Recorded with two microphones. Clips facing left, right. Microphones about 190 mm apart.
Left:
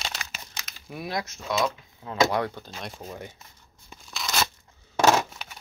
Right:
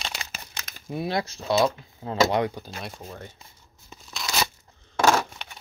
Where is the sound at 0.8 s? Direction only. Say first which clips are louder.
Right 5 dB; 25° right (ahead or behind).